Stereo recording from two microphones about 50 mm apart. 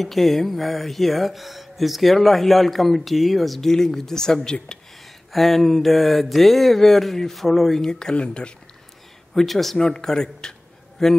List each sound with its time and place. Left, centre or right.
0.0 s speech: centre
4.7 s a sound: centre
5.3 s speech: centre
7.8 s speech: centre
9.3 s speech: centre